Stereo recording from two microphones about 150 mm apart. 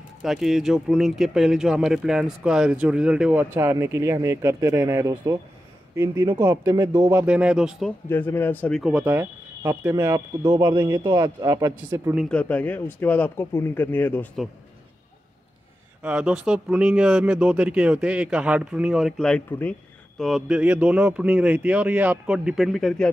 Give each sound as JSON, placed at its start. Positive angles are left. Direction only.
{"t": 0.2, "sound": "speech", "side_deg": 0}
{"t": 8.1, "sound": "speech", "side_deg": 15}
{"t": 8.8, "sound": "speech", "side_deg": -10}
{"t": 10.4, "sound": "a man's voice", "side_deg": -30}
{"t": 12.3, "sound": "speech", "side_deg": 10}
{"t": 16.0, "sound": "speech", "side_deg": -10}